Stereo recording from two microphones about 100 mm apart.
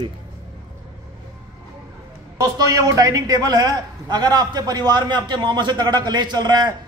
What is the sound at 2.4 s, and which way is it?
A man's voice, 35° right (ahead or behind).